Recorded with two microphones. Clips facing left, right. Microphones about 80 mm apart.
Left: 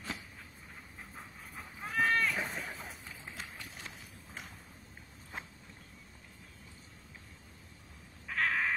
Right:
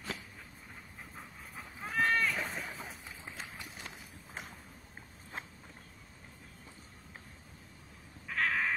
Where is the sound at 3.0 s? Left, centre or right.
Centre.